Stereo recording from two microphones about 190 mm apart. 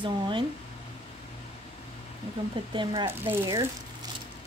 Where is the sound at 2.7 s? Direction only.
25° right (ahead or behind).